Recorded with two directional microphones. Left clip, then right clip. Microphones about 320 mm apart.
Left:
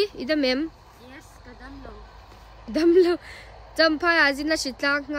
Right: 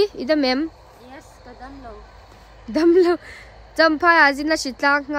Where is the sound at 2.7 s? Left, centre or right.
Centre.